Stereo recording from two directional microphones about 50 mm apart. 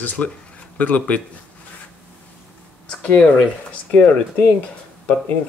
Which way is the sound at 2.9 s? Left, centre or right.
Centre.